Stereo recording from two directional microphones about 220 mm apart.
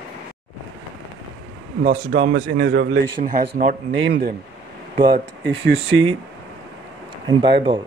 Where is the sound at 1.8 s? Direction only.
50° right (ahead or behind).